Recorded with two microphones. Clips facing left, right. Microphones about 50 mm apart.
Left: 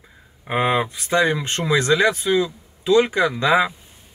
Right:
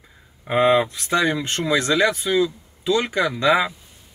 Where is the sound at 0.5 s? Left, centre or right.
Centre.